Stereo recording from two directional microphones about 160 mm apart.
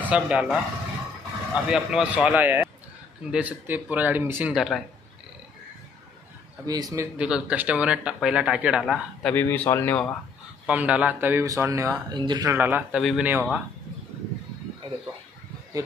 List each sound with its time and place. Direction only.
0.0 s speech: 5° right (ahead or behind)
4.6 s speech: centre (ahead or behind)
6.6 s a man's voice: 25° right (ahead or behind)
7.2 s speech: 5° right (ahead or behind)
9.3 s speech: 10° left (ahead or behind)
10.7 s speech: 10° right (ahead or behind); by 12.5 s 25° right (ahead or behind)
12.5 s speech: 10° right (ahead or behind)
13.3 s speech: 10° right (ahead or behind)